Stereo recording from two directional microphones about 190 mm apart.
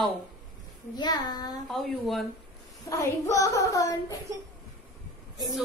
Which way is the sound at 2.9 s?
15° left (ahead or behind).